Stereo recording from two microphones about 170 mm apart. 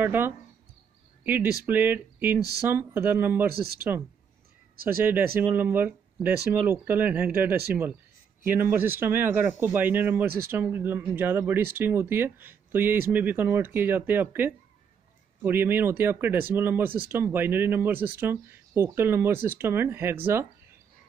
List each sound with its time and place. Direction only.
0.0 s speech: 10° right (ahead or behind)
3.4 s speech: 65° right (ahead or behind)
5.0 s speech: 10° right (ahead or behind)